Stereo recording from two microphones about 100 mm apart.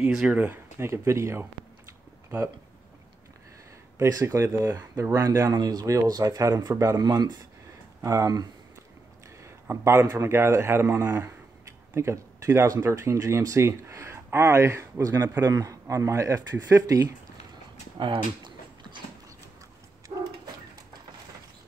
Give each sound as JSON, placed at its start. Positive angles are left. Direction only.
{"t": 0.0, "sound": "speech", "side_deg": -5}
{"t": 0.7, "sound": "speech", "side_deg": -25}
{"t": 4.0, "sound": "speech", "side_deg": -30}
{"t": 5.6, "sound": "a man's voice", "side_deg": -40}
{"t": 9.4, "sound": "a sound", "side_deg": -25}
{"t": 10.0, "sound": "a man's voice", "side_deg": -25}
{"t": 17.9, "sound": "a sound", "side_deg": -50}